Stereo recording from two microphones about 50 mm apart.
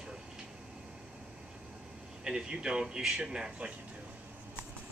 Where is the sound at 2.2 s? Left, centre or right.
Centre.